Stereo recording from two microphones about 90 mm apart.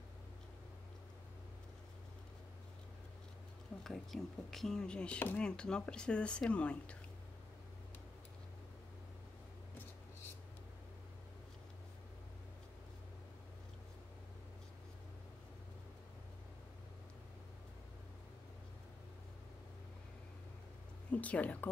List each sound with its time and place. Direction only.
3.8 s speech: 5° left (ahead or behind)
21.1 s speech: 15° left (ahead or behind)